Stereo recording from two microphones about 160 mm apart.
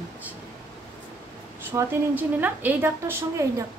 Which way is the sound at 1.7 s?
10° right (ahead or behind).